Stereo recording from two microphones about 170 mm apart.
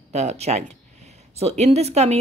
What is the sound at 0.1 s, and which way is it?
A woman's voice, 40° right (ahead or behind).